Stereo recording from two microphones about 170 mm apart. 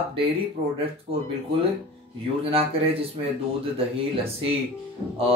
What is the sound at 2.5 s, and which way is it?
Speech, 35° right (ahead or behind).